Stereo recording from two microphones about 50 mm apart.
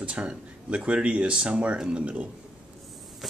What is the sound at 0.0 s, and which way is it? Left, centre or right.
Speech, right.